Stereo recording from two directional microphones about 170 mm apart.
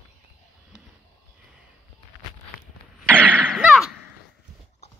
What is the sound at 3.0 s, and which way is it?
Cough, 5° left (ahead or behind).